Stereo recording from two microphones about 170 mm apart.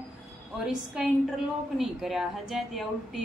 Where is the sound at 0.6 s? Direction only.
5° right (ahead or behind).